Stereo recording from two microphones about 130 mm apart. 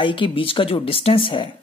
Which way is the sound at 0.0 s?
40° left (ahead or behind).